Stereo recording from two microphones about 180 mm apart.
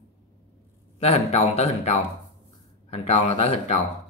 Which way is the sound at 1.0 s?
35° left (ahead or behind).